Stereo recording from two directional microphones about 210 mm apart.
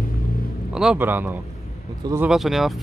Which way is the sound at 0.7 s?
5° right (ahead or behind).